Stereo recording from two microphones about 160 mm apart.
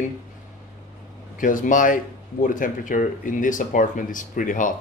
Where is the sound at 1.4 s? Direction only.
55° left (ahead or behind).